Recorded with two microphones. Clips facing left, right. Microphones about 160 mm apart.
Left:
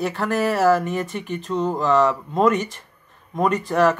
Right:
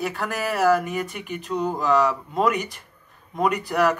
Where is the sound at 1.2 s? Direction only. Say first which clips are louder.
Left 3 dB; 10° right (ahead or behind).